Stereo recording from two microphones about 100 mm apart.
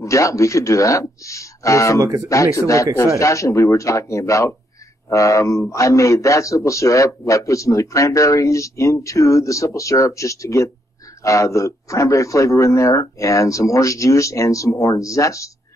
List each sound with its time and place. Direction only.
0.0 s a man's voice: 30° left (ahead or behind)
2.0 s speech: 35° right (ahead or behind)
2.2 s a man's voice: 30° left (ahead or behind)